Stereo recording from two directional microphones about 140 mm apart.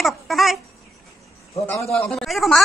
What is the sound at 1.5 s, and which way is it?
Speech, 20° left (ahead or behind).